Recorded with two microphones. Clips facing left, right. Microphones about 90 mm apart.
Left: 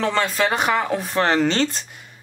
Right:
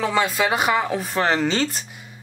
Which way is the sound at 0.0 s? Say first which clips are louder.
Even; 5° right (ahead or behind).